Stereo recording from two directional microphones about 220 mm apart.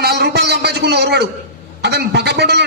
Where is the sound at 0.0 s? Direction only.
50° right (ahead or behind).